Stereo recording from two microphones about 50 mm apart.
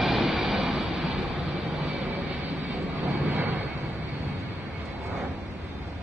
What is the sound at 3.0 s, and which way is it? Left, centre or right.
Vehicle, right.